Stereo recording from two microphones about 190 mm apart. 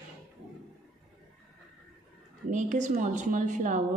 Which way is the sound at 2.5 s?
40° right (ahead or behind).